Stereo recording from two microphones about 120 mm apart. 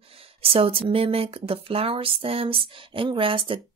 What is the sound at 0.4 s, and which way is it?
Speech, 50° right (ahead or behind).